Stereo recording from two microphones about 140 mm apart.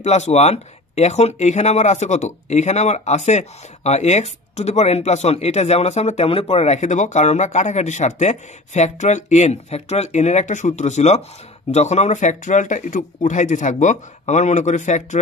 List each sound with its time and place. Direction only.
0.0 s speech: 55° left (ahead or behind)